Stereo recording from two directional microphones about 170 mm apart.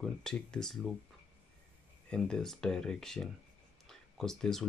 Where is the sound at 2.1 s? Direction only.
5° left (ahead or behind).